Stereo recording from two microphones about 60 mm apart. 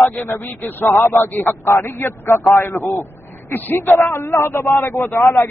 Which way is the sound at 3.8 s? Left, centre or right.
Left.